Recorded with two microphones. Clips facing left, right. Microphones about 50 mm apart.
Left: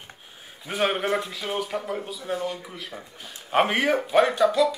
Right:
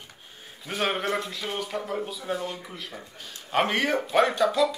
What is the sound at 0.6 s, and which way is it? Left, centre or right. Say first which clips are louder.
A man's voice: left 3 dB; centre.